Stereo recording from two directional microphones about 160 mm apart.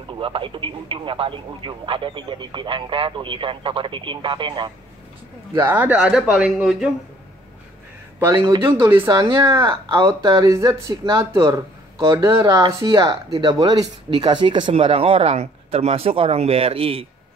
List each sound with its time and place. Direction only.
0.1 s speech: 35° right (ahead or behind)
5.5 s a man's voice: 15° right (ahead or behind)
8.2 s a man's voice: 15° right (ahead or behind)
9.5 s speech: 30° right (ahead or behind)